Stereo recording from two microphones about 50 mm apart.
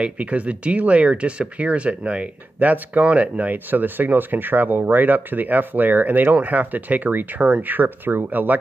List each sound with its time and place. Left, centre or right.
0.0 s speech: right